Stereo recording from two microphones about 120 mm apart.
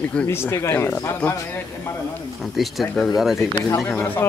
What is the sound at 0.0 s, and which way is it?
Speech, 10° left (ahead or behind).